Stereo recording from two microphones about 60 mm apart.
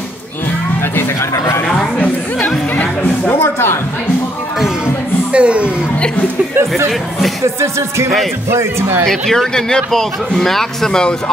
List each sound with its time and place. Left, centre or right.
1.3 s speech: left
3.3 s speech: left
5.3 s speech: centre
8.5 s speech: right
9.0 s a man's voice: centre